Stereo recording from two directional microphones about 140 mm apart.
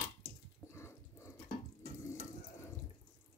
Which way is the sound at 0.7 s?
20° left (ahead or behind).